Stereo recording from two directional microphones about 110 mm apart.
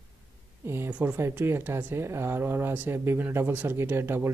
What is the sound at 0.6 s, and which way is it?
Speech, 20° right (ahead or behind).